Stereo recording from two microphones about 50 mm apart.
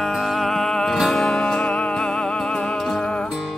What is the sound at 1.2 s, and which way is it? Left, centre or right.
Music, centre.